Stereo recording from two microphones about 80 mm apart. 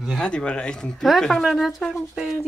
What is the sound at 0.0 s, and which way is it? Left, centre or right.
Speech, centre.